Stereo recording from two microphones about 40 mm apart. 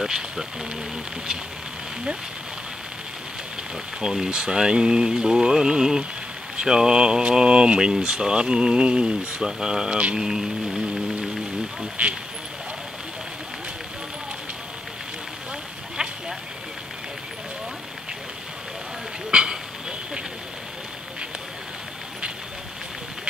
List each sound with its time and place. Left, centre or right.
0.0 s speech: centre
4.0 s speech: centre
10.1 s speech: centre